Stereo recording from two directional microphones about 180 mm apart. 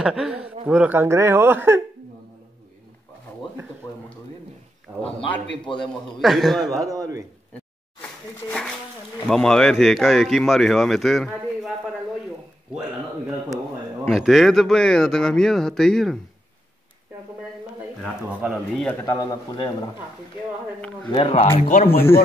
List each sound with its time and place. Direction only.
0.0 s speech: 5° right (ahead or behind)
3.8 s speech: 20° left (ahead or behind)
5.7 s a man's voice: 25° left (ahead or behind)
6.2 s speech: centre (ahead or behind)
6.8 s speech: 20° right (ahead or behind)
8.0 s a sound: 10° left (ahead or behind)
9.3 s speech: 5° left (ahead or behind)
14.0 s speech: centre (ahead or behind)
18.0 s speech: 5° right (ahead or behind)
19.0 s a man's voice: 20° left (ahead or behind)
21.3 s speech: 35° left (ahead or behind)